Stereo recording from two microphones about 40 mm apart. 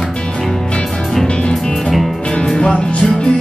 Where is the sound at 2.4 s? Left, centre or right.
Left.